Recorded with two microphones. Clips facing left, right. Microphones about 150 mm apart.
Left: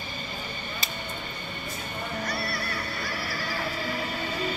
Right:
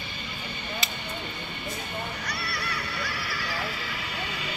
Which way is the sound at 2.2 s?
45° left (ahead or behind).